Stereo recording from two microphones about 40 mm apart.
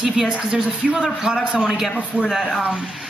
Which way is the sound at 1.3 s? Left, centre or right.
Right.